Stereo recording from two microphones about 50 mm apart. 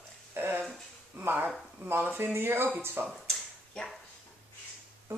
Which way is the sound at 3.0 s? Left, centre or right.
Right.